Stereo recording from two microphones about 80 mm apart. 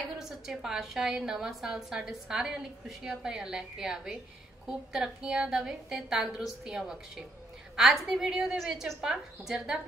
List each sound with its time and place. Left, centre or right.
0.2 s a woman's voice: centre